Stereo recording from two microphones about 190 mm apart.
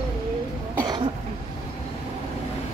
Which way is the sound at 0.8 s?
20° right (ahead or behind).